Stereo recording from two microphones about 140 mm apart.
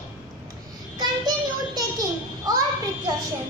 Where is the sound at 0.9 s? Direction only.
30° right (ahead or behind).